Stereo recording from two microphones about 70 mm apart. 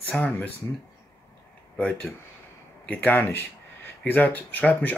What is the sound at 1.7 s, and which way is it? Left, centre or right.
Speech, left.